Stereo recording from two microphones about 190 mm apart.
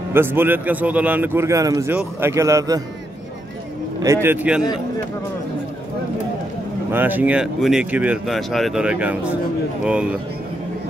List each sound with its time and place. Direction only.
0.1 s a man's voice: 10° right (ahead or behind)
4.0 s a man's voice: 15° right (ahead or behind)
6.9 s speech: 10° right (ahead or behind)